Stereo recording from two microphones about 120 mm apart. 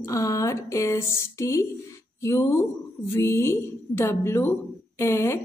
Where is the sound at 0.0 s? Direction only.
25° left (ahead or behind).